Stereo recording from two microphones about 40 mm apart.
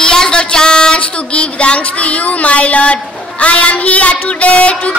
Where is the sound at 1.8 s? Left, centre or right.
Left.